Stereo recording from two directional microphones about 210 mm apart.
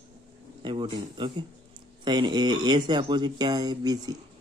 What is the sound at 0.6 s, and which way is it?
Speech, 25° right (ahead or behind).